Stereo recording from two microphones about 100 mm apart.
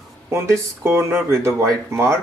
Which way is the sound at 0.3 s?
25° right (ahead or behind).